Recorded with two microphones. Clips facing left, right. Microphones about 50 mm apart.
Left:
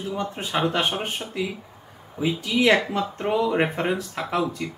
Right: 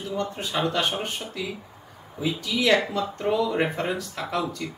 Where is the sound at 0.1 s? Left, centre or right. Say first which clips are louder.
Left 1 dB; left.